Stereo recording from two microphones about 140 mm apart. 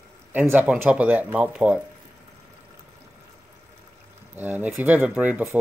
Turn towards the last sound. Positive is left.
turn(degrees=-10)  # may be behind; listen again after turning